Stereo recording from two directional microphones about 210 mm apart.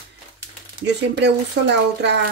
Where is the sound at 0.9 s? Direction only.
55° right (ahead or behind).